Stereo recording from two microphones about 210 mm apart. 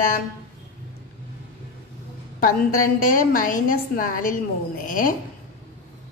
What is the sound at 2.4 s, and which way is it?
A woman's voice, 40° left (ahead or behind).